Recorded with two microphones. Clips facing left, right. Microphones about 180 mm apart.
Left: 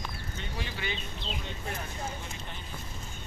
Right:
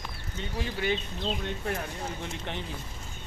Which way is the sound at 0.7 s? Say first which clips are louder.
Right 7 dB; 45° right (ahead or behind).